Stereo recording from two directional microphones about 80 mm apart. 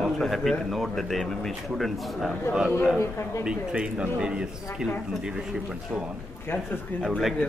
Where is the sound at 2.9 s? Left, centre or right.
Left.